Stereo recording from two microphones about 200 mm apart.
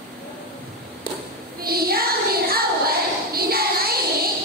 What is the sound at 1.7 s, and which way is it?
Child singing, 50° right (ahead or behind).